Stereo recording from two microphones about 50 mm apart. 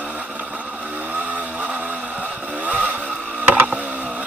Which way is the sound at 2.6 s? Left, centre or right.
Right.